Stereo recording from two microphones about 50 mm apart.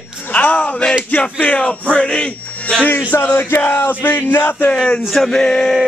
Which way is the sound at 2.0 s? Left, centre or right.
Left.